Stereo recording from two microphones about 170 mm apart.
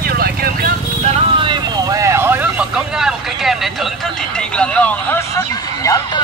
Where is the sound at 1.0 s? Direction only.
35° right (ahead or behind); by 3.5 s 5° right (ahead or behind).